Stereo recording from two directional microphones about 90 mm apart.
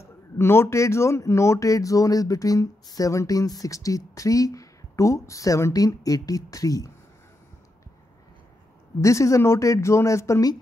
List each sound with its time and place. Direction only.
0.0 s speech: 30° left (ahead or behind)
9.0 s speech: 35° left (ahead or behind)